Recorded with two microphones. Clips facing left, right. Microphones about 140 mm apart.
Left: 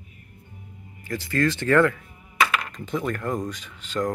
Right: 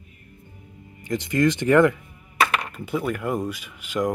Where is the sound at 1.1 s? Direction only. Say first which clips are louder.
Right 3 dB; 20° right (ahead or behind).